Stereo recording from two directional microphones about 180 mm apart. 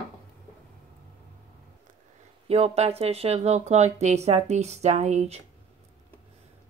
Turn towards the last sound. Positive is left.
turn(degrees=-40)  # may be behind; listen again after turning